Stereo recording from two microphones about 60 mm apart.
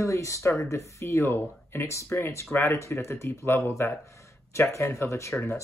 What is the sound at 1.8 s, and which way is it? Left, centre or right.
Speech, left.